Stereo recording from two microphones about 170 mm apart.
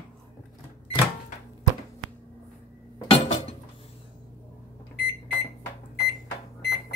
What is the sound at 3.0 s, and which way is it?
Dishes, 35° left (ahead or behind).